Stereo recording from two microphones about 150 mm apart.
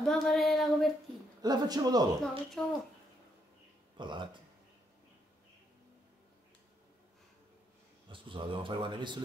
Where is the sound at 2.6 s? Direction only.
5° left (ahead or behind).